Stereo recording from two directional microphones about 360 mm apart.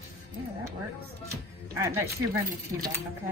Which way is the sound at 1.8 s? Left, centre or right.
Centre.